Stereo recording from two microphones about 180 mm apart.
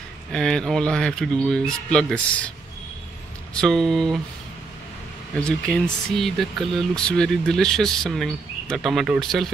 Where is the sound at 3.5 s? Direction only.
5° left (ahead or behind).